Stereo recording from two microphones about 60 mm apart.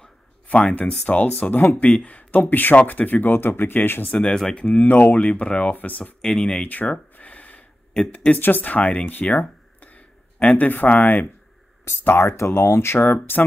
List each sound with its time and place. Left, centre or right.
0.6 s speech: centre
1.0 s speech: left
4.1 s speech: centre
6.2 s speech: centre
6.7 s a sound: left
8.1 s speech: left
13.0 s speech: left